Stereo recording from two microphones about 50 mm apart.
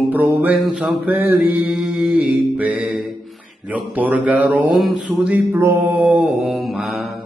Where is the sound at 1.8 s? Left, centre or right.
Right.